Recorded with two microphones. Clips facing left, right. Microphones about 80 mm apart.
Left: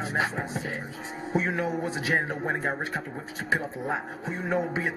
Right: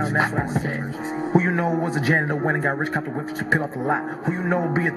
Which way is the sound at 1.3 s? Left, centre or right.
Right.